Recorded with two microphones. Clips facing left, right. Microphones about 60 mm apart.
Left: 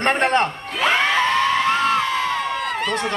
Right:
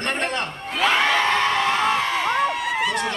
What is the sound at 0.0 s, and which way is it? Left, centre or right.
Speech, left.